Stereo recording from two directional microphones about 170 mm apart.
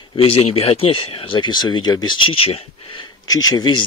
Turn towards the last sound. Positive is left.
turn(degrees=25)  # may be behind; listen again after turning